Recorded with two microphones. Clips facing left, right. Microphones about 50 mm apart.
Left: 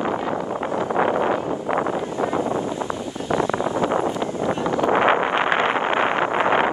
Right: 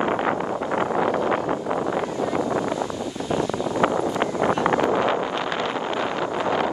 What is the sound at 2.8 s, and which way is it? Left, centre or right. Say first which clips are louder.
Wind noise: even; left.